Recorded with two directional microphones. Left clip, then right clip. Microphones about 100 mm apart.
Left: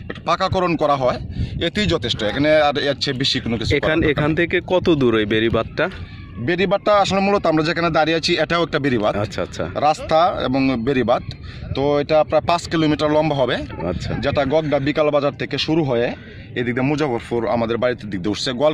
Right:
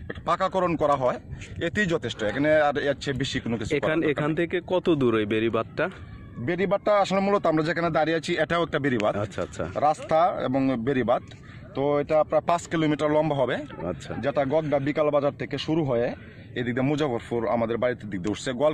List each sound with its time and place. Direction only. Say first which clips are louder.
0.5 s speech: left 5 dB; 45° right (ahead or behind)
0.8 s speech: left 5 dB; 35° right (ahead or behind); by 4.5 s 5° right (ahead or behind)
4.5 s speech: left 7 dB; 5° left (ahead or behind)
6.4 s speech: left 6 dB; 20° right (ahead or behind)
6.8 s speech: left 5 dB; 40° right (ahead or behind); by 9.1 s 15° right (ahead or behind)
9.1 s speech: left 6 dB; centre (ahead or behind)
9.8 s speech: left 6 dB; 20° right (ahead or behind)
12.3 s speech: left 6 dB; 35° right (ahead or behind)
12.9 s speech: left 5 dB; 15° right (ahead or behind)
13.2 s speech: left 6 dB; 30° right (ahead or behind)
14.2 s speech: left 6 dB; 15° right (ahead or behind); by 15.7 s 40° right (ahead or behind)
15.7 s speech: left 5 dB; 55° right (ahead or behind); by 17.4 s 90° right
17.5 s speech: left 5 dB; 25° right (ahead or behind)